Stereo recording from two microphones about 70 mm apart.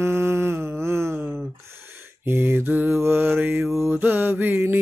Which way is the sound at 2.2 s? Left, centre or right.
Right.